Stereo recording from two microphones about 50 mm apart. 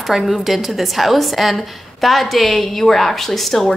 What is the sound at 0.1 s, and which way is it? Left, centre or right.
A woman's voice, centre.